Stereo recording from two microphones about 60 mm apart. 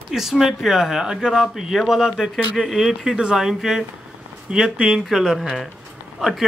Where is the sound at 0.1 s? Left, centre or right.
Centre.